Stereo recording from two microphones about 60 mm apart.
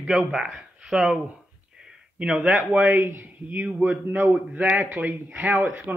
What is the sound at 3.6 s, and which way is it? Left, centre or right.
A man's voice, centre.